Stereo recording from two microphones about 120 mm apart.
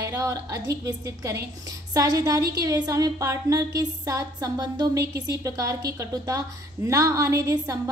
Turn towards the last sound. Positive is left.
turn(degrees=-25)  # may be behind; listen again after turning